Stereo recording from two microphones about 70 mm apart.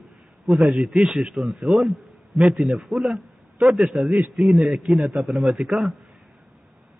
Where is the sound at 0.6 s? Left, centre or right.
Centre.